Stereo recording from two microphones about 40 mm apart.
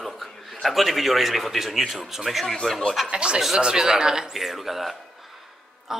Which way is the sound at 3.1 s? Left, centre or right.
Right.